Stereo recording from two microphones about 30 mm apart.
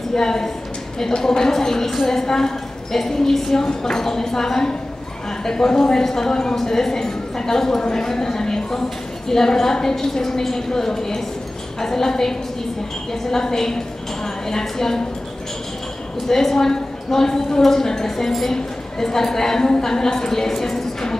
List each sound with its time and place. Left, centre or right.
0.1 s a woman's voice: centre
16.3 s a woman's voice: centre